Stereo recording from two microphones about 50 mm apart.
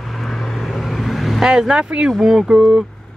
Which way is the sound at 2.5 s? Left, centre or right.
Centre.